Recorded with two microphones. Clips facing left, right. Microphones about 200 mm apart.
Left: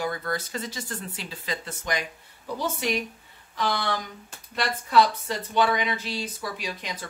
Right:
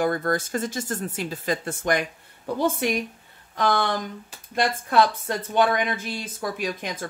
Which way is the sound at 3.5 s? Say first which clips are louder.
Right 4 dB; 50° right (ahead or behind).